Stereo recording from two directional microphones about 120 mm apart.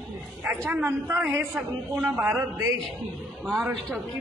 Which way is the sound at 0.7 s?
20° right (ahead or behind).